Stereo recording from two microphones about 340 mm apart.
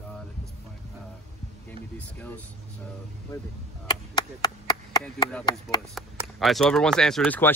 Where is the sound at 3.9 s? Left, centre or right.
Centre.